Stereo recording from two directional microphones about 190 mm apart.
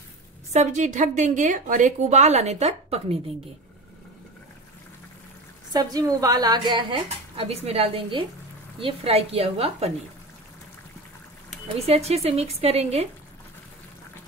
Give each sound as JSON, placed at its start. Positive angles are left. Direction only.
{"t": 0.5, "sound": "a woman's voice", "side_deg": -35}
{"t": 5.7, "sound": "a woman's voice", "side_deg": -20}
{"t": 11.8, "sound": "a woman's voice", "side_deg": -35}